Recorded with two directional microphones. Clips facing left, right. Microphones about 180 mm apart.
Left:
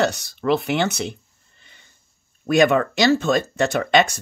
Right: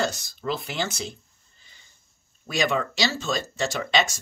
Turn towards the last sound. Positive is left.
turn(degrees=55)  # may be behind; listen again after turning